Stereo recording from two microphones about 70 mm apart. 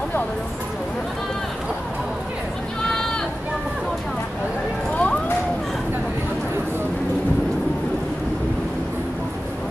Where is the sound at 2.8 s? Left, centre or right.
Centre.